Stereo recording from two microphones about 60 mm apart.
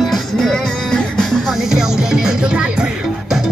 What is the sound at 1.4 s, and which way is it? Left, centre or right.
Music, centre.